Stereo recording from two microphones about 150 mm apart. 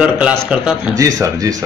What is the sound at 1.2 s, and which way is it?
Speech, 25° right (ahead or behind).